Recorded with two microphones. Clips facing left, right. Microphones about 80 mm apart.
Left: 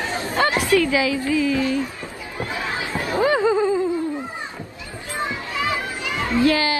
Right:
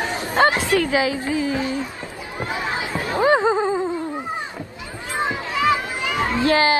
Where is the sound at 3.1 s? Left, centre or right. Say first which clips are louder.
Right 1 dB; right.